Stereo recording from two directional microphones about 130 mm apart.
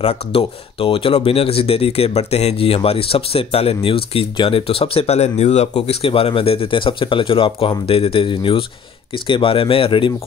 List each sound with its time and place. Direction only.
0.0 s speech: 50° left (ahead or behind)